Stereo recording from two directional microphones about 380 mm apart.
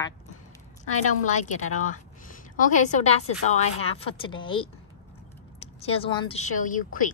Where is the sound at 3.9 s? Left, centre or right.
Centre.